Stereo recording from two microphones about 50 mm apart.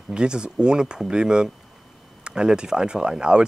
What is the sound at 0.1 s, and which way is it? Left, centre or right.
Speech, centre.